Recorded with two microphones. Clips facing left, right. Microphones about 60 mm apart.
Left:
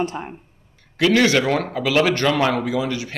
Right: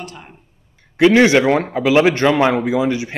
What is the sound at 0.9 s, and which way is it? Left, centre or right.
A man's voice, right.